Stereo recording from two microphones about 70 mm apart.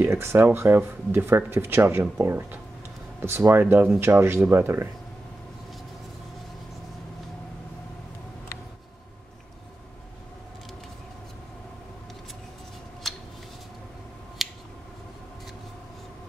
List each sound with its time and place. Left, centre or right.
0.0 s speech: right
13.0 s a sound: centre
14.4 s scissors: centre